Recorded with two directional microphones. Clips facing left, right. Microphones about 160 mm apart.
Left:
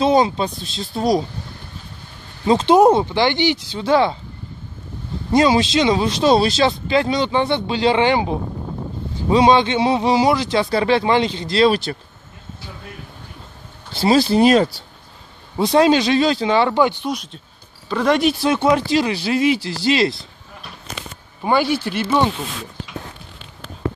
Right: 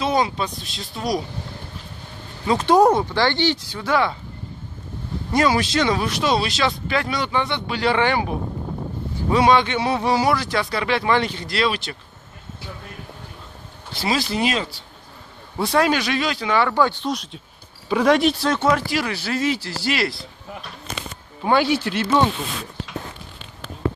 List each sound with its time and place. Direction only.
0.0 s speech: 30° left (ahead or behind)
2.4 s speech: 25° left (ahead or behind)
5.3 s speech: 20° left (ahead or behind)
13.9 s speech: 30° left (ahead or behind)
15.5 s speech: 20° left (ahead or behind)
17.1 s speech: centre (ahead or behind)
18.4 s speech: 15° left (ahead or behind)
21.5 s speech: 5° left (ahead or behind)